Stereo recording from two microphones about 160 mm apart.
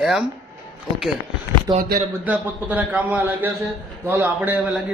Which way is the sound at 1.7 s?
25° right (ahead or behind).